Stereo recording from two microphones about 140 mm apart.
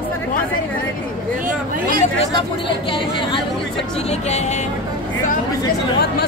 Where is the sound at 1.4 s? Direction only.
80° right.